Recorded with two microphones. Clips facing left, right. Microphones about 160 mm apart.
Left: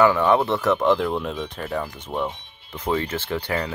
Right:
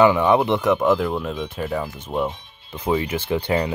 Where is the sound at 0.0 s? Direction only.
15° right (ahead or behind).